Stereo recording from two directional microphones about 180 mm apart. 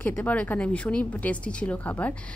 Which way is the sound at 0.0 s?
10° left (ahead or behind).